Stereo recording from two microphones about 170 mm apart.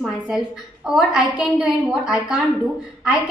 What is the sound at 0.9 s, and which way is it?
A woman's voice, 5° right (ahead or behind).